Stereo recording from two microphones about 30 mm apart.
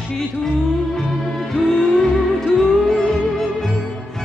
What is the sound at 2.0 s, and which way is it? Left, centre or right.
Music, centre.